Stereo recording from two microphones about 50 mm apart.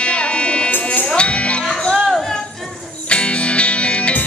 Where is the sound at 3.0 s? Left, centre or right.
Left.